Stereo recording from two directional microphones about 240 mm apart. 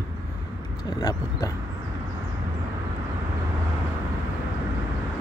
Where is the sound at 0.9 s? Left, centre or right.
Centre.